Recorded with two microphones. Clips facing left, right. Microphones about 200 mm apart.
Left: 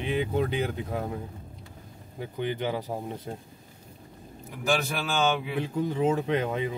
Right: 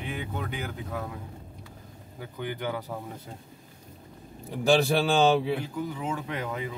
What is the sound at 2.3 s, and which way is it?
Speech, 20° left (ahead or behind).